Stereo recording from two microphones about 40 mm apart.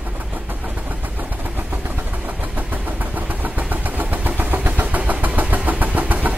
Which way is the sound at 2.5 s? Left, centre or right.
Right.